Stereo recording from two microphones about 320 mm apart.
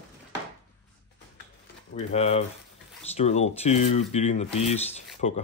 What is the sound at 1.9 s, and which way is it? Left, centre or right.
Speech, left.